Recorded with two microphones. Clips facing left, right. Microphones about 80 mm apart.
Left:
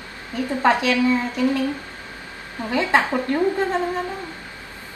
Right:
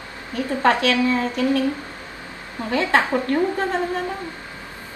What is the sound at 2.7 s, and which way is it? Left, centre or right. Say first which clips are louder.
Speech: even; centre.